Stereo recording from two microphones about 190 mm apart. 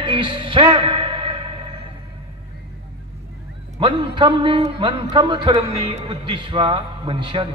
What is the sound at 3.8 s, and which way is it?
A man's voice, 25° right (ahead or behind).